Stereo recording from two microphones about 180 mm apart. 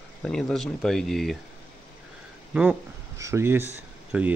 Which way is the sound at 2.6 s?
15° right (ahead or behind).